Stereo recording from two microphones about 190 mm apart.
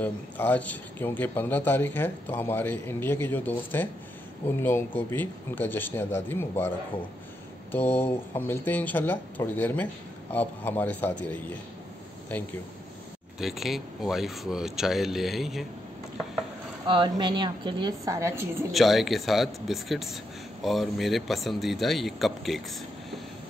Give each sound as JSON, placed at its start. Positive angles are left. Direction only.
{"t": 0.0, "sound": "a man's voice", "side_deg": 10}
{"t": 7.7, "sound": "a man's voice", "side_deg": 10}
{"t": 13.4, "sound": "speech", "side_deg": 0}
{"t": 16.8, "sound": "a woman's voice", "side_deg": -25}
{"t": 18.7, "sound": "speech", "side_deg": 0}